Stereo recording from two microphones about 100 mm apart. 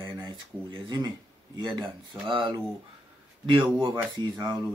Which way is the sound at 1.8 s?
50° right (ahead or behind).